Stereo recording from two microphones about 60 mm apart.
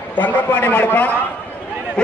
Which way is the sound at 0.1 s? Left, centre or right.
Left.